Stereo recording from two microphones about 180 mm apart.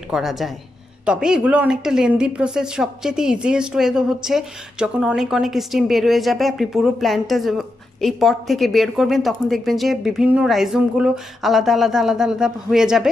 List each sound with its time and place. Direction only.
0.1 s a woman's voice: centre (ahead or behind)